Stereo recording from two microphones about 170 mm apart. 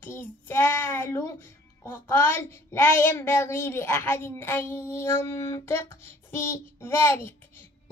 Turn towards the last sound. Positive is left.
turn(degrees=15)  # may be behind; listen again after turning